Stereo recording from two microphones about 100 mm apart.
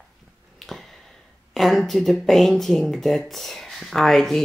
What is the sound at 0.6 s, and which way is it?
Speech, 5° left (ahead or behind).